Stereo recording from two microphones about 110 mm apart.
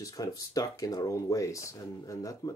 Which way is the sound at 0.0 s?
30° left (ahead or behind).